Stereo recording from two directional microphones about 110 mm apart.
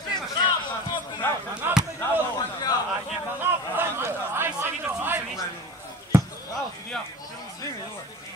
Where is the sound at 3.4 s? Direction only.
20° right (ahead or behind).